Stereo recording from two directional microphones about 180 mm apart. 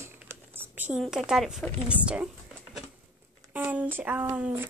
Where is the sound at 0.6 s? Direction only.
10° right (ahead or behind).